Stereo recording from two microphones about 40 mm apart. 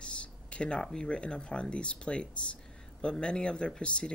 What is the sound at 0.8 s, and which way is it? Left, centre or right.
Speech, centre.